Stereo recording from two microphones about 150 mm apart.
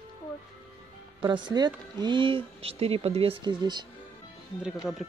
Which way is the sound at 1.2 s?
30° right (ahead or behind).